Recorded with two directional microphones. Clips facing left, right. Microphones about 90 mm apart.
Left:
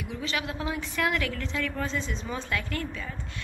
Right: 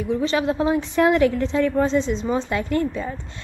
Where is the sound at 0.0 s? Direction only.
35° right (ahead or behind).